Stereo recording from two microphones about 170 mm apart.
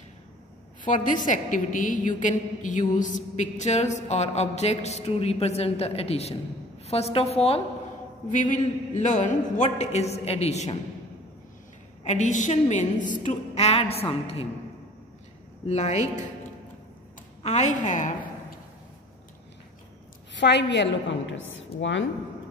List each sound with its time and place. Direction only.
0.8 s a woman's voice: 50° left (ahead or behind)
8.3 s a woman's voice: 50° left (ahead or behind)
12.0 s a woman's voice: 45° left (ahead or behind)
15.6 s a woman's voice: 40° left (ahead or behind)
17.4 s a woman's voice: 40° left (ahead or behind)
20.3 s a woman's voice: 90° left
21.7 s a woman's voice: 35° left (ahead or behind)